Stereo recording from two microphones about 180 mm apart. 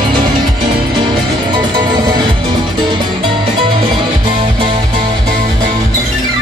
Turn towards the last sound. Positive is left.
turn(degrees=-30)  # may be behind; listen again after turning